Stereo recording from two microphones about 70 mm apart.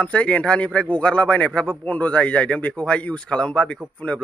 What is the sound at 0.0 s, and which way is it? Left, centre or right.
Speech, centre.